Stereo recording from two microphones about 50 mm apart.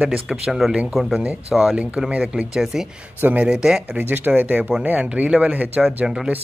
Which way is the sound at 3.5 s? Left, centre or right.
Centre.